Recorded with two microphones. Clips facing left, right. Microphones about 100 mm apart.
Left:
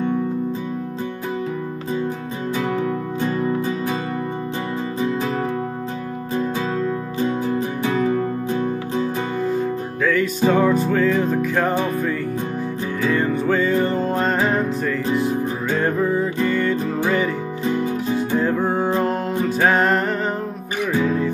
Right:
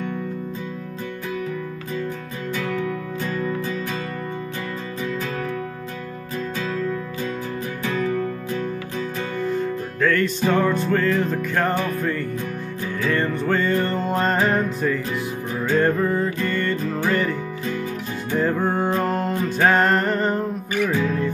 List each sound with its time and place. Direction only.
3.2 s music: 25° left (ahead or behind)
6.3 s music: 25° left (ahead or behind)
9.6 s music: 5° left (ahead or behind)
13.0 s music: 10° left (ahead or behind)
18.4 s music: centre (ahead or behind)